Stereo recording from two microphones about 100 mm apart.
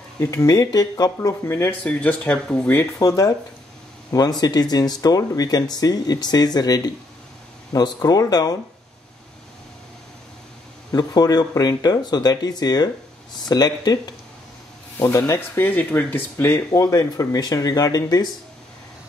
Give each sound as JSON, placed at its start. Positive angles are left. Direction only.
{"t": 0.2, "sound": "speech", "side_deg": 30}
{"t": 1.9, "sound": "speech", "side_deg": 15}
{"t": 2.7, "sound": "speech", "side_deg": 35}
{"t": 10.9, "sound": "speech", "side_deg": 40}
{"t": 15.0, "sound": "speech", "side_deg": 30}